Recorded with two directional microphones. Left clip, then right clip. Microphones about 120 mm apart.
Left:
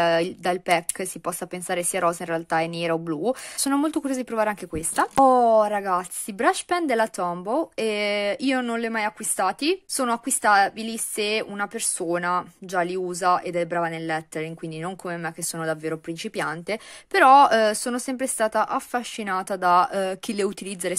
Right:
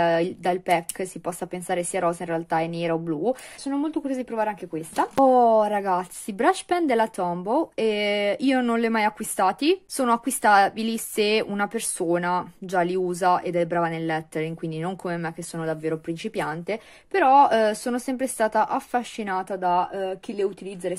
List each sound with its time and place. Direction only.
0.0 s speech: 25° left (ahead or behind)
3.6 s speech: 90° left
4.0 s speech: 40° left (ahead or behind)
5.2 s a woman's voice: 25° left (ahead or behind)
15.5 s speech: 25° left (ahead or behind)
17.1 s speech: 45° left (ahead or behind)
17.5 s speech: 25° left (ahead or behind)
19.6 s speech: 55° left (ahead or behind)